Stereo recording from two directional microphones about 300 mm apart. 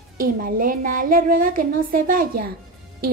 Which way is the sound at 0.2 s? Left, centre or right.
Right.